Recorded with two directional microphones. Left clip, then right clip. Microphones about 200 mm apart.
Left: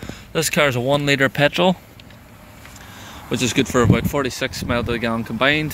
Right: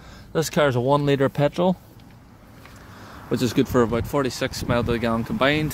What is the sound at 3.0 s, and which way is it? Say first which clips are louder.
Speech: left 2 dB; 5° right (ahead or behind).